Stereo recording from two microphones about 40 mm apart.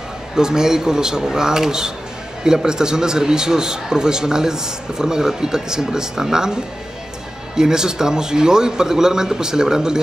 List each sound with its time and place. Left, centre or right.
0.4 s a man's voice: centre